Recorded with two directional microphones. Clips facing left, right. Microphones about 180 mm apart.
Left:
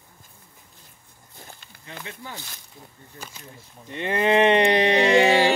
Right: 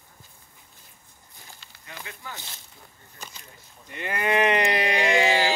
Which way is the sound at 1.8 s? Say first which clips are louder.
Left 3 dB; 30° left (ahead or behind).